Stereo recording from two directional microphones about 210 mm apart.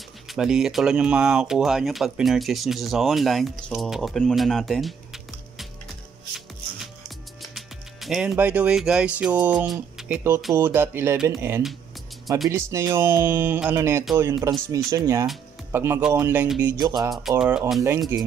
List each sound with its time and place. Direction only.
0.3 s speech: centre (ahead or behind)
6.3 s shuffling cards: centre (ahead or behind)
7.5 s speech: centre (ahead or behind)
16.8 s speech: 20° right (ahead or behind)
17.4 s speech: 5° right (ahead or behind)